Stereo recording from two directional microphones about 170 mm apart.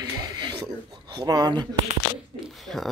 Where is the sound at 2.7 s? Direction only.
Centre (ahead or behind).